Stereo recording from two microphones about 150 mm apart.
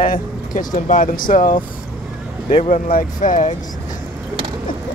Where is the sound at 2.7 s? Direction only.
65° left (ahead or behind).